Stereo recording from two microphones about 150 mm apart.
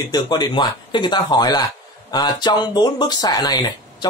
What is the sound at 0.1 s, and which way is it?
Speech, 30° left (ahead or behind).